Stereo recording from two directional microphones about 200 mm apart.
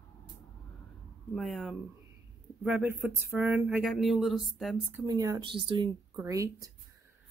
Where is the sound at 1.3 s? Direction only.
Centre (ahead or behind).